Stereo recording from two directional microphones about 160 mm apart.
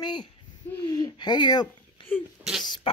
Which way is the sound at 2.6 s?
30° left (ahead or behind).